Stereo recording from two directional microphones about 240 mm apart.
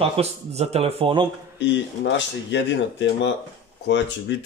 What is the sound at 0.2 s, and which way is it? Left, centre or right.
Speech, right.